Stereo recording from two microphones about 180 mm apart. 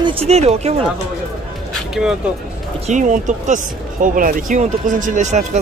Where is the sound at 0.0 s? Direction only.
30° right (ahead or behind).